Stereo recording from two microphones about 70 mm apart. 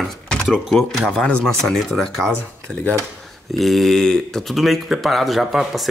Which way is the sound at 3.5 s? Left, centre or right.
Centre.